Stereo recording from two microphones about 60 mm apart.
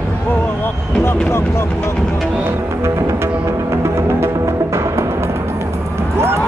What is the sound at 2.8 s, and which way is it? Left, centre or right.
Music, right.